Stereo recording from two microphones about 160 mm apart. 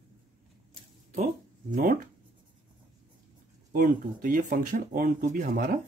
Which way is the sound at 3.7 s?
60° right (ahead or behind).